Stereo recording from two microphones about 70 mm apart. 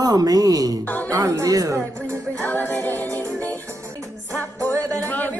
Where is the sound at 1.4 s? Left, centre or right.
Right.